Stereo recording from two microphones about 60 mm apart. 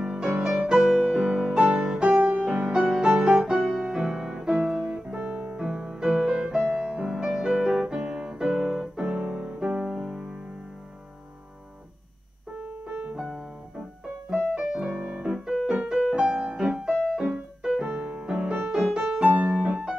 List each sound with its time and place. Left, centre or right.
0.0 s music: centre
2.3 s music: centre
5.6 s music: centre
7.9 s keyboard: centre
9.4 s music: centre
12.5 s piano: centre